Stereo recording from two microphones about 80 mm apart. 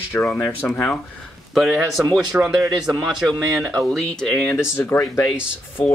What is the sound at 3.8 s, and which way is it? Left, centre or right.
Speech, centre.